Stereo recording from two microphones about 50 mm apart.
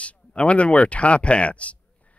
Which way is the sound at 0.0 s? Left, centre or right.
Left.